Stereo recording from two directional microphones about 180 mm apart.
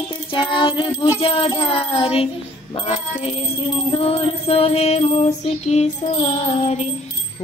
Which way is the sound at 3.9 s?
30° left (ahead or behind).